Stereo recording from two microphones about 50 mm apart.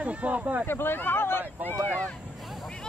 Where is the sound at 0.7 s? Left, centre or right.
Left.